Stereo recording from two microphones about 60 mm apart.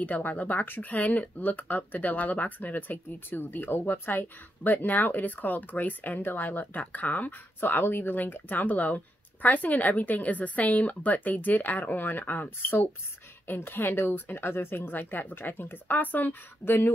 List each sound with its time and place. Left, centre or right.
0.0 s a woman's voice: left